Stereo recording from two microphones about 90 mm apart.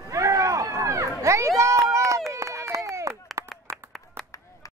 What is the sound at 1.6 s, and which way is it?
Run, 35° right (ahead or behind).